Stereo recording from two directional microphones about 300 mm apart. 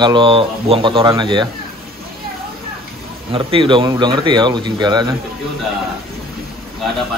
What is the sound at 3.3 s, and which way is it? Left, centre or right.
Speech, centre.